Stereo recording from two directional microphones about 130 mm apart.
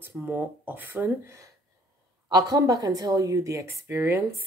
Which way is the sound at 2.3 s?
30° right (ahead or behind).